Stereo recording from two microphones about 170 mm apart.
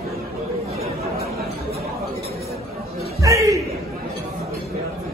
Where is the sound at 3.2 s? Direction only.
20° right (ahead or behind).